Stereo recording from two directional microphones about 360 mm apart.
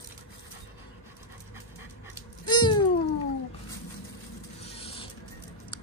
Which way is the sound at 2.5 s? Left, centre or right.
Centre.